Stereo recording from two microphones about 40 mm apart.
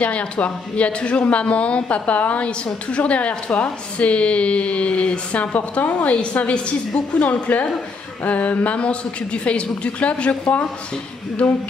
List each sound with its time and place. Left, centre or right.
0.0 s a woman's voice: left
5.4 s a woman's voice: left
10.4 s speech: left